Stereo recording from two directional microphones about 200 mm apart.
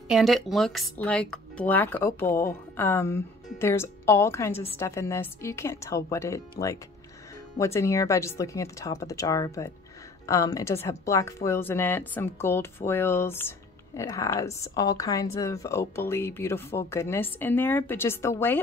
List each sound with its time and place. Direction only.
0.1 s speech: centre (ahead or behind)